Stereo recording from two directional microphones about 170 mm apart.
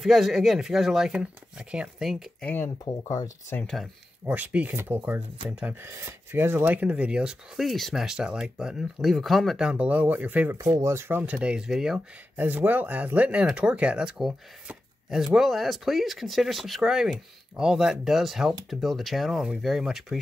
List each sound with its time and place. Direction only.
0.0 s speech: centre (ahead or behind)
2.5 s speech: 15° left (ahead or behind)
3.6 s speech: centre (ahead or behind)